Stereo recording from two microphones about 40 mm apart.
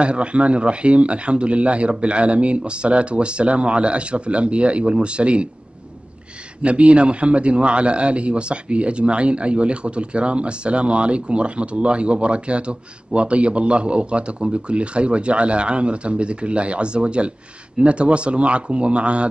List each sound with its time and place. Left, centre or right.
0.0 s a man's voice: right
6.6 s a man's voice: right